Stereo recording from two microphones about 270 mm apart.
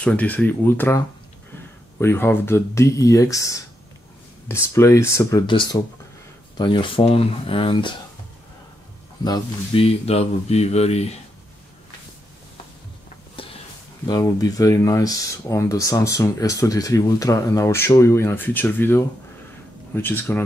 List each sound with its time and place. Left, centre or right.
0.0 s speech: centre
9.2 s speech: centre
13.4 s a sound: centre
14.0 s speech: centre